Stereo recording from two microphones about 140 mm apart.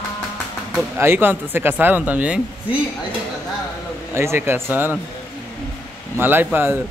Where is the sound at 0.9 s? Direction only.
15° right (ahead or behind).